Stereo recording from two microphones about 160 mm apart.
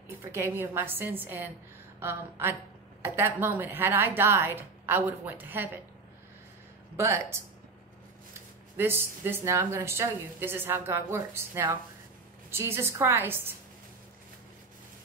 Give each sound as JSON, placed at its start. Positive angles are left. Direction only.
{"t": 0.2, "sound": "a woman's voice", "side_deg": -15}
{"t": 7.0, "sound": "a woman's voice", "side_deg": -15}
{"t": 8.7, "sound": "a woman's voice", "side_deg": -15}